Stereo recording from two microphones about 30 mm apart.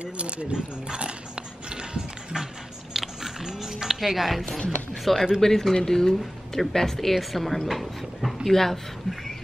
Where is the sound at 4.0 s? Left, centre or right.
Centre.